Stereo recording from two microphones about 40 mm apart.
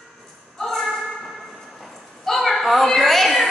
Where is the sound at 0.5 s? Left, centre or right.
Centre.